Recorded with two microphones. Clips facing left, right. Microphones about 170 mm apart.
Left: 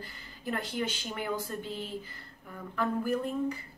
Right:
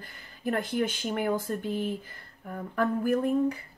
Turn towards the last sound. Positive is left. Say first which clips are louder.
# right 5 dB
turn(degrees=-55)  # may be behind; listen again after turning